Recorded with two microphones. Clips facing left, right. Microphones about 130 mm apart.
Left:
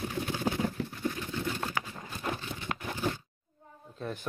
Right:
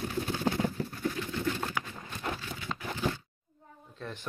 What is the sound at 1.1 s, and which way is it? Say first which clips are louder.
Pigeon: right 2 dB; 10° left (ahead or behind).